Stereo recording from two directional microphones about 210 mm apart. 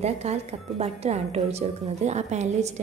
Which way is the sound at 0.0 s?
30° right (ahead or behind).